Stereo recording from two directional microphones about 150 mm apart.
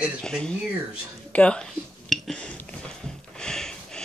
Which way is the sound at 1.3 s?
5° left (ahead or behind).